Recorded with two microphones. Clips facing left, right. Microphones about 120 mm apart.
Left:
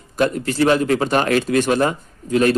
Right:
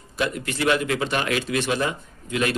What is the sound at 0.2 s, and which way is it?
A man's voice, 35° left (ahead or behind).